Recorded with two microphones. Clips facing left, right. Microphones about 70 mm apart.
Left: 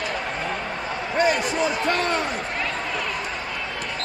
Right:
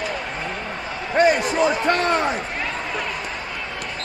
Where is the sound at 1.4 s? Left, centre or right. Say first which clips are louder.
Right 4 dB; right.